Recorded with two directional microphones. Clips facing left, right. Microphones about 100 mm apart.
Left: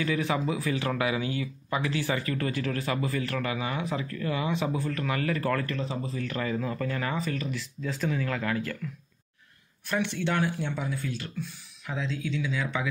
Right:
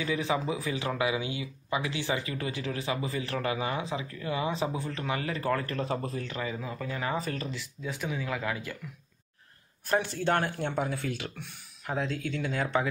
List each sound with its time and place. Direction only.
0.0 s speech: 20° right (ahead or behind)
3.9 s speech: 20° right (ahead or behind)
4.4 s speech: 30° right (ahead or behind)
4.7 s speech: 20° right (ahead or behind)
5.8 s speech: 50° right (ahead or behind)
6.2 s speech: 15° right (ahead or behind)
7.2 s speech: 40° right (ahead or behind)
7.5 s speech: 15° right (ahead or behind)
9.8 s speech: 40° right (ahead or behind); by 11.5 s 70° right (ahead or behind)
11.8 s speech: 50° right (ahead or behind)